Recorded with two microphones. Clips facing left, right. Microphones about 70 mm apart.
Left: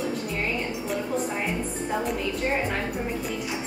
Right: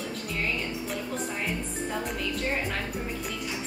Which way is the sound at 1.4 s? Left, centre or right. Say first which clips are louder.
Left 3 dB; centre.